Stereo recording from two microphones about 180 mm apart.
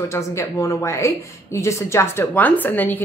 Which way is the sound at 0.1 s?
15° left (ahead or behind).